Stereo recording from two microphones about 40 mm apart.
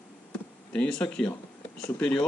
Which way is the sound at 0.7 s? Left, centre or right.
Left.